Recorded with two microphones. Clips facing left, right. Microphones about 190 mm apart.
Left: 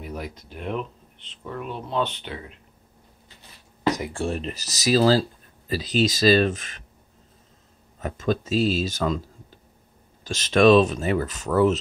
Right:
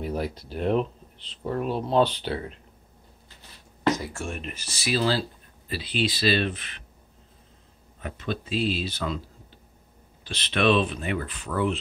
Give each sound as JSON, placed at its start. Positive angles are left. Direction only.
{"t": 0.0, "sound": "speech", "side_deg": -30}
{"t": 4.1, "sound": "speech", "side_deg": 35}
{"t": 8.0, "sound": "speech", "side_deg": 40}
{"t": 10.2, "sound": "speech", "side_deg": 45}